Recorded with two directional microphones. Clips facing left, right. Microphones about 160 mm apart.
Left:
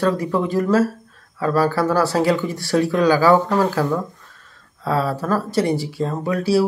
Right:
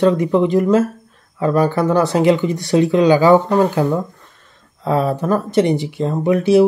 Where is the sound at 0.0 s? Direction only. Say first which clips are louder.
Right 6 dB; 20° right (ahead or behind).